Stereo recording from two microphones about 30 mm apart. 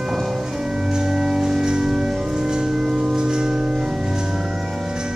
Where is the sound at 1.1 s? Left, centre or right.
Right.